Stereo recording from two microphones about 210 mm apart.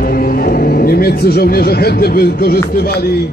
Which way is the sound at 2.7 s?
45° left (ahead or behind).